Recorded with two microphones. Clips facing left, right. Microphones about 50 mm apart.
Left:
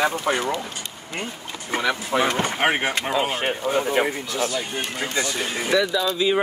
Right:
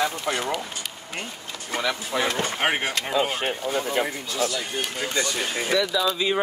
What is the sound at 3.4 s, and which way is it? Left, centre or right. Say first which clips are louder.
Speech: left 4 dB; left.